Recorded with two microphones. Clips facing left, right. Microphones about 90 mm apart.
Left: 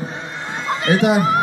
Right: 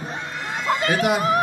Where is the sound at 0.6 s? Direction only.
35° left (ahead or behind).